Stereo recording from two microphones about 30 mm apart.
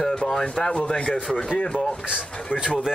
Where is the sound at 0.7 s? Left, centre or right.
Left.